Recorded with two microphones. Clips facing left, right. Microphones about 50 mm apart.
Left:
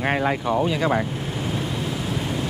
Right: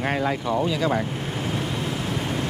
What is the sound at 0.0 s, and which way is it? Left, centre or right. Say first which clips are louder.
Speech: left 2 dB; left.